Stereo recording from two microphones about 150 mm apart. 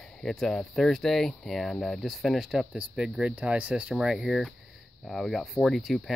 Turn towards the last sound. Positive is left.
turn(degrees=0)  # may be behind; listen again after turning